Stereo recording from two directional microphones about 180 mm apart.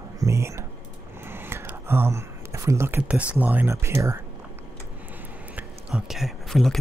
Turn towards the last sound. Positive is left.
turn(degrees=0)  # may be behind; listen again after turning